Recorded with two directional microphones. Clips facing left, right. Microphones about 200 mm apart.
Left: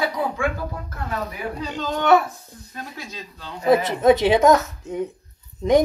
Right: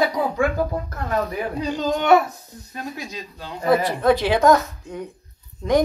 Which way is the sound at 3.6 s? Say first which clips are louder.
Left 2 dB; 20° left (ahead or behind).